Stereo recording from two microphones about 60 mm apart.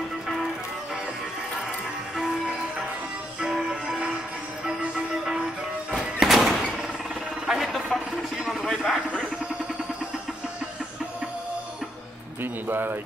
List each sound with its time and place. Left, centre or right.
2.1 s music: centre
7.4 s helicopter: centre
8.5 s a sound: centre
12.6 s speech: right